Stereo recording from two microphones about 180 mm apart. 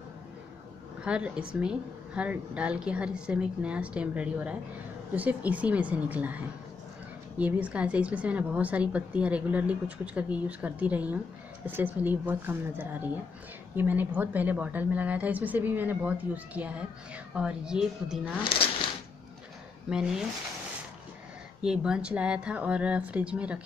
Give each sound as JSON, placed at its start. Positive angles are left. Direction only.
{"t": 1.0, "sound": "a woman's voice", "side_deg": -5}
{"t": 18.4, "sound": "speech", "side_deg": 30}
{"t": 19.9, "sound": "speech", "side_deg": -5}
{"t": 21.6, "sound": "a woman's voice", "side_deg": -5}